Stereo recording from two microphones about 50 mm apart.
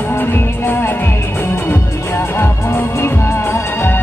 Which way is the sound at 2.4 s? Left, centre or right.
Left.